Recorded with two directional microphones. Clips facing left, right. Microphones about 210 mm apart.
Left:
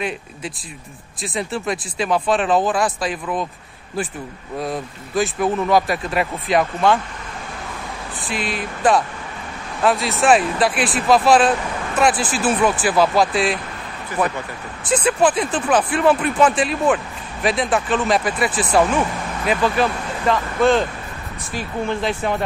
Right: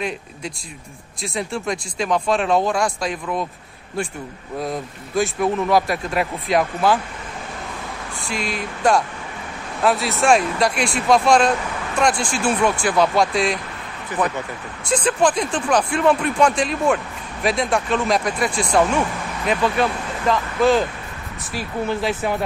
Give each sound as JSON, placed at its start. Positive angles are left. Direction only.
{"t": 1.2, "sound": "speech", "side_deg": 0}
{"t": 4.6, "sound": "speech", "side_deg": 0}
{"t": 8.2, "sound": "speech", "side_deg": 0}
{"t": 14.9, "sound": "speech", "side_deg": 5}